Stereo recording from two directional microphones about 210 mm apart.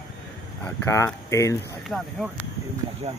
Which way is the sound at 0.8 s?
15° left (ahead or behind).